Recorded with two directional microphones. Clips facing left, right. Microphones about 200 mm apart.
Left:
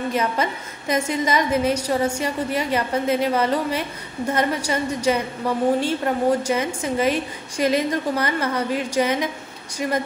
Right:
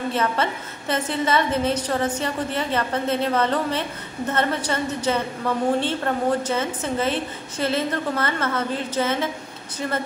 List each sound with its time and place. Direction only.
0.1 s a woman's voice: 10° left (ahead or behind)